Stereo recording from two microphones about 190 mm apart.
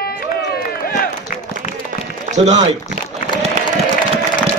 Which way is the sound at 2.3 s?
35° right (ahead or behind).